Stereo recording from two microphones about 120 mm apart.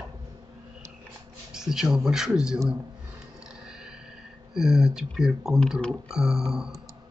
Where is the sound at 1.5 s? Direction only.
5° right (ahead or behind).